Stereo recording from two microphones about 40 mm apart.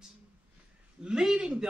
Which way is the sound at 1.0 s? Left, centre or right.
Right.